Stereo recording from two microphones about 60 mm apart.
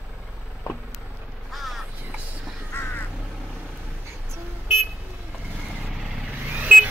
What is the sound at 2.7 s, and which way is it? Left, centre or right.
Crow, left.